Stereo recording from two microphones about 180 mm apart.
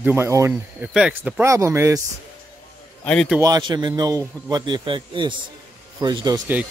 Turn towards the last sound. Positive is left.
turn(degrees=-25)  # may be behind; listen again after turning